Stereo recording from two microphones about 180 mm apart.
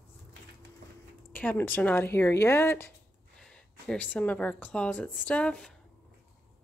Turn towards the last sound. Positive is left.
turn(degrees=5)  # may be behind; listen again after turning